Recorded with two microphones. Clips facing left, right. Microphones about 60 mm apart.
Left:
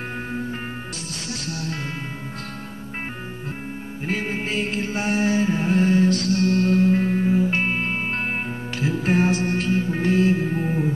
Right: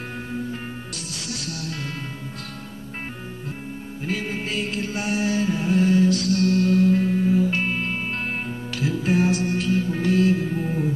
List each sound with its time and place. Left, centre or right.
1.1 s music: left
4.1 s music: left